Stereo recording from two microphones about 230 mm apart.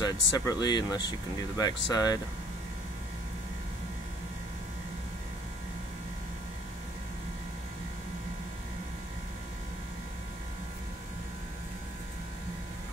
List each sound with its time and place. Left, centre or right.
0.0 s speech: centre